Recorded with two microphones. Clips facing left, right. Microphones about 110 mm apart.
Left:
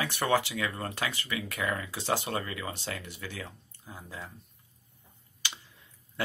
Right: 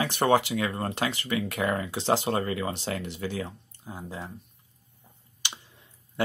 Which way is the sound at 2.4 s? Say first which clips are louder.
Right 7 dB; 35° right (ahead or behind).